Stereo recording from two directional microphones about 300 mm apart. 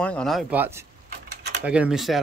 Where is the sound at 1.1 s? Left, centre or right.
Right.